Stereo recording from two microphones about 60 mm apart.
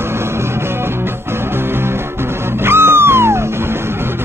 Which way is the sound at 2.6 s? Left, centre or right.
Right.